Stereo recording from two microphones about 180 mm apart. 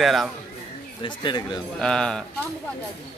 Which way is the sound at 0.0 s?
Centre (ahead or behind).